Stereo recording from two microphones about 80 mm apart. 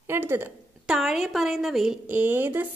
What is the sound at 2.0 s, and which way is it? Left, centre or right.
Speech, right.